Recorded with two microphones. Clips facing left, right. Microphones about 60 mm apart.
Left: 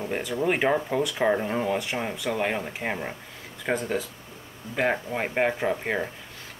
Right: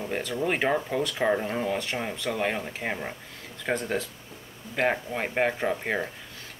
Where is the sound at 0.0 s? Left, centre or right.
Centre.